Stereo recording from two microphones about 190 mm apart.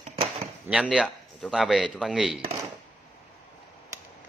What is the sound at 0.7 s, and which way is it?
Speech, 5° right (ahead or behind).